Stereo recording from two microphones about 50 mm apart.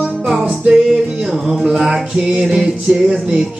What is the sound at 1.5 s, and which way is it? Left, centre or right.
Music, centre.